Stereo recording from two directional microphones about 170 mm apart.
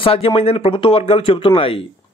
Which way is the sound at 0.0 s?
35° left (ahead or behind).